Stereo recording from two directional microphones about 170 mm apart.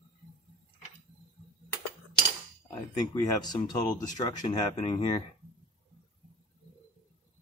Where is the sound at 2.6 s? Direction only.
20° left (ahead or behind).